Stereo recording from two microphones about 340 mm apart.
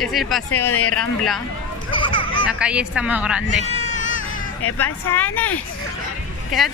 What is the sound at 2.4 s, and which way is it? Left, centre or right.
Speech, centre.